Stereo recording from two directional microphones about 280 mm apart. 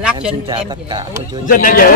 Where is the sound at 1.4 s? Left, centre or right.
Left.